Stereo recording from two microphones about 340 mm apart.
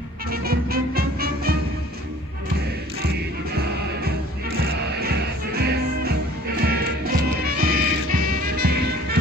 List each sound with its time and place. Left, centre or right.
0.3 s music: right
5.0 s music: right